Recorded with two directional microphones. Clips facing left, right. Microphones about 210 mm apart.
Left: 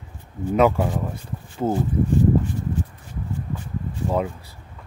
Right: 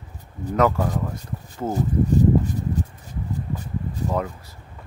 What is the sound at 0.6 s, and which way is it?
Speech, 20° left (ahead or behind).